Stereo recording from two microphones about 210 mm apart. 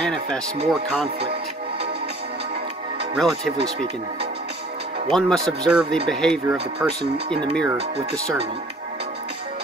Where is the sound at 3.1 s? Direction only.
Centre (ahead or behind).